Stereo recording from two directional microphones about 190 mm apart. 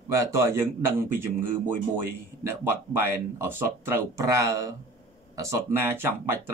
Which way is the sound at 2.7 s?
10° right (ahead or behind).